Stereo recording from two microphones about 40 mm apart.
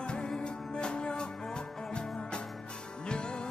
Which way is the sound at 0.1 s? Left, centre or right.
Left.